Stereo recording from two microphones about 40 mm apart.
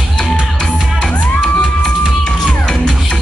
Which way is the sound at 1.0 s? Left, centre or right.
Centre.